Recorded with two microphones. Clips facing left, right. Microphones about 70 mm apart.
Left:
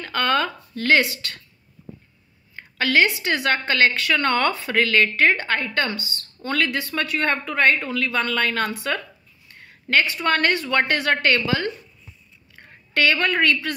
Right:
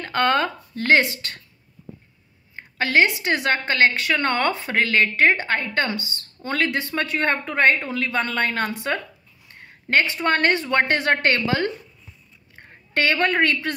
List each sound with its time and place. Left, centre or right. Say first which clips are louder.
0.0 s a woman's voice: right 2 dB; right
2.5 s a woman's voice: even; right